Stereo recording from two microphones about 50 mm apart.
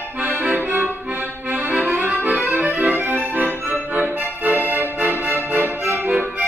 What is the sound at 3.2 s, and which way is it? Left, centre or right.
Music, right.